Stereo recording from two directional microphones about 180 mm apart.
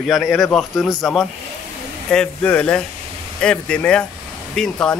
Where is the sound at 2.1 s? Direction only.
5° left (ahead or behind).